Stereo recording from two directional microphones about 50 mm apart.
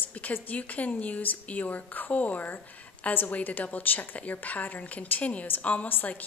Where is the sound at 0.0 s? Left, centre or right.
Left.